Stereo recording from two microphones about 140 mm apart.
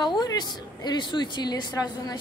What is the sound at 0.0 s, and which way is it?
A woman's voice, 30° left (ahead or behind).